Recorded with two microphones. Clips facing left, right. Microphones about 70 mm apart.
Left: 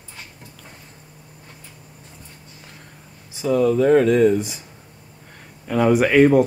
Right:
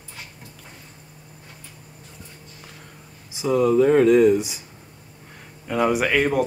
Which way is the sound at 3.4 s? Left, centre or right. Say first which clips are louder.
Even; centre.